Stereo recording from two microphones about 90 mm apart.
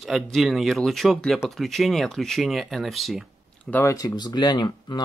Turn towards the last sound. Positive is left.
turn(degrees=55)  # may be behind; listen again after turning